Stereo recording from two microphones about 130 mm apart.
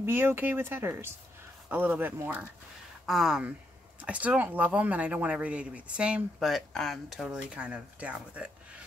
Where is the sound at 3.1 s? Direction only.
5° right (ahead or behind).